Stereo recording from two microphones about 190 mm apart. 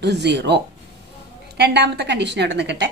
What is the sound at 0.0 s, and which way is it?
Speech, 65° right (ahead or behind).